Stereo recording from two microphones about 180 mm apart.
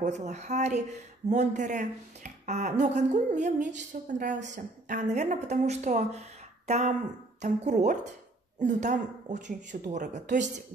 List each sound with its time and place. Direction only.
0.0 s speech: 40° right (ahead or behind)
7.4 s speech: 40° right (ahead or behind)